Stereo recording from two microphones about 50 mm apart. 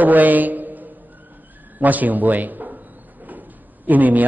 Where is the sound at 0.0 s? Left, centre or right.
Right.